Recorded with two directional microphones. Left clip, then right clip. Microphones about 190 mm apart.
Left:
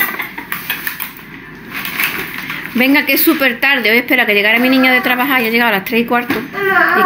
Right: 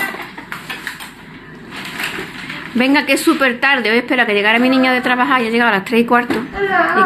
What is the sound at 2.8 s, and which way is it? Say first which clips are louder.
A woman's voice: left 2 dB; 5° left (ahead or behind).